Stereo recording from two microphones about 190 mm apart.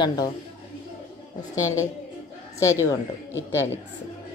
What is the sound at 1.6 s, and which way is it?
A woman's voice, 15° left (ahead or behind).